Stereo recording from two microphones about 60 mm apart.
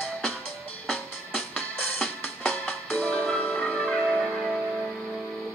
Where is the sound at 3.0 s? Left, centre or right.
Left.